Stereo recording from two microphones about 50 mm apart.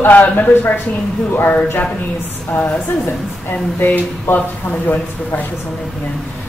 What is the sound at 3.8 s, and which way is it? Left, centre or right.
Speech, left.